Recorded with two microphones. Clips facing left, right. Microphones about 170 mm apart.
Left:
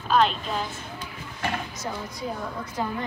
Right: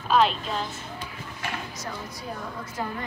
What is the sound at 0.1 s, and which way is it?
Speech, centre (ahead or behind).